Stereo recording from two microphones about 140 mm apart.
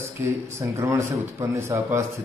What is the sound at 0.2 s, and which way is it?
Speech, 20° right (ahead or behind).